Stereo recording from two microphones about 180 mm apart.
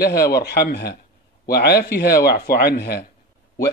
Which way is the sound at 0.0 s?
60° left (ahead or behind).